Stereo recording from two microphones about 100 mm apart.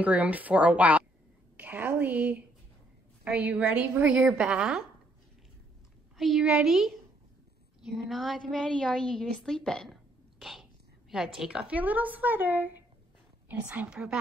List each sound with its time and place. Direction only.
0.0 s a woman's voice: 15° right (ahead or behind)
6.1 s a woman's voice: centre (ahead or behind)
10.4 s a sound: centre (ahead or behind)
11.3 s speech: 10° right (ahead or behind)